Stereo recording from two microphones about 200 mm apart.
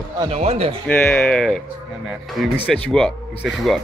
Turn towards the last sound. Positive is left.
turn(degrees=0)  # may be behind; listen again after turning